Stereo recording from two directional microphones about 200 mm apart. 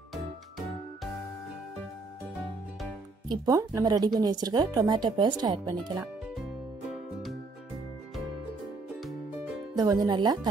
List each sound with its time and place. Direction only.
3.3 s a woman's voice: 15° right (ahead or behind)
9.8 s a woman's voice: 20° right (ahead or behind)